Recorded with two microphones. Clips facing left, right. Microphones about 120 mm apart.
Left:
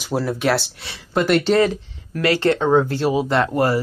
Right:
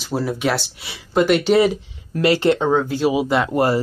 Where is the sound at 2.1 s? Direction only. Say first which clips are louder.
Right 2 dB; 20° right (ahead or behind).